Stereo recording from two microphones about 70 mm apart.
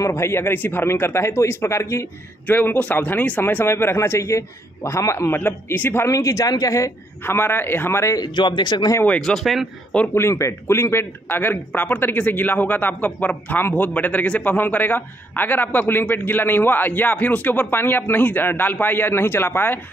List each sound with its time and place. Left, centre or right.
0.0 s a man's voice: left
2.4 s a man's voice: left
5.4 s a man's voice: left
6.0 s a man's voice: left
7.2 s a man's voice: left
8.2 s a man's voice: left
9.2 s speech: centre
10.1 s speech: left